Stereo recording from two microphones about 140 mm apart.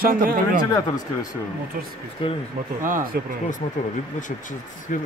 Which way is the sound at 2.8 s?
70° right (ahead or behind).